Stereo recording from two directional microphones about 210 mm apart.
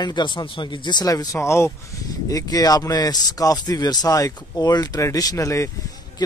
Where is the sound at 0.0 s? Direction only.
20° left (ahead or behind).